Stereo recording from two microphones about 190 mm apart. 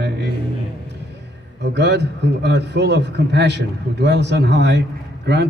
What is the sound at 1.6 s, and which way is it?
Speech, 65° right (ahead or behind).